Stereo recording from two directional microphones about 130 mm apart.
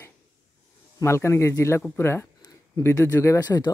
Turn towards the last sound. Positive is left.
turn(degrees=30)  # may be behind; listen again after turning